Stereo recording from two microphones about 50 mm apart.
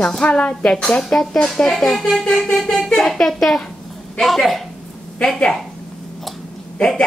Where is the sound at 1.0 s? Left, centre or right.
Centre.